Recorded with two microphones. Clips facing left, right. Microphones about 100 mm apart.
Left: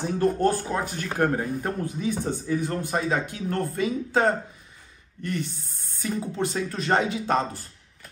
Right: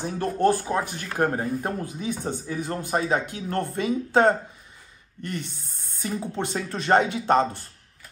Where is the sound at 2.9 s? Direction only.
30° right (ahead or behind).